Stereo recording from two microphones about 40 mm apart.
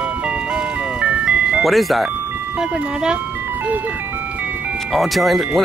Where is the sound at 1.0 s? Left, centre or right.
Right.